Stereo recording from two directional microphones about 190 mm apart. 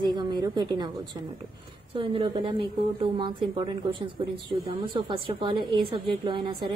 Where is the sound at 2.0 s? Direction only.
30° right (ahead or behind).